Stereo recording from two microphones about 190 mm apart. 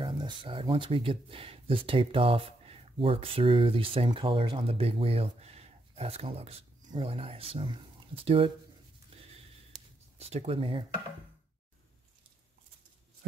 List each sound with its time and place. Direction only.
0.0 s speech: 25° right (ahead or behind)
9.1 s a sound: 30° right (ahead or behind)
10.1 s speech: 35° right (ahead or behind)